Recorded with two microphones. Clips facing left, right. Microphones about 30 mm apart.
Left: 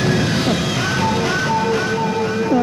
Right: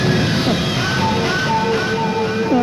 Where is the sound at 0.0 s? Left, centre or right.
Centre.